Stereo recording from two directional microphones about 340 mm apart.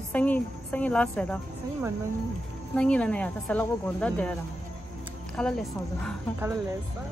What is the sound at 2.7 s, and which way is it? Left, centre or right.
Speech, centre.